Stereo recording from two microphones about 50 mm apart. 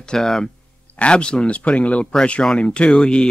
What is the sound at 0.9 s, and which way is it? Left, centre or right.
Speech, left.